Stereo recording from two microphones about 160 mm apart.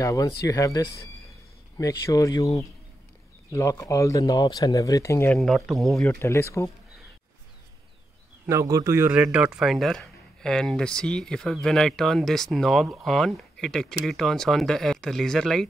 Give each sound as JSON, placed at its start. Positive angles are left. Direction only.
{"t": 0.0, "sound": "speech", "side_deg": 20}
{"t": 6.0, "sound": "speech", "side_deg": 15}
{"t": 8.5, "sound": "speech", "side_deg": -20}